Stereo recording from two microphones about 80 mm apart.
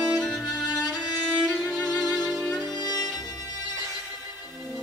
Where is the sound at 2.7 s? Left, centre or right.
Left.